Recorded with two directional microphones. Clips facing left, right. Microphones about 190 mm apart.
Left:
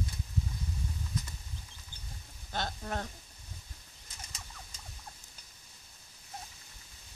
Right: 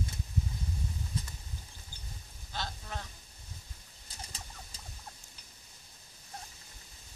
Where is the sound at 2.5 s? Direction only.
50° left (ahead or behind).